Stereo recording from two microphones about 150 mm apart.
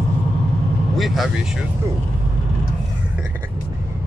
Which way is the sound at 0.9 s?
Centre (ahead or behind).